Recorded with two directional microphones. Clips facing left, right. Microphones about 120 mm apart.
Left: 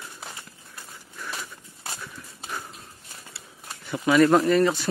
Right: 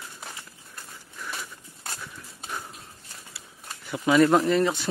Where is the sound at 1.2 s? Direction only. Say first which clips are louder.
Left 1 dB; 5° left (ahead or behind).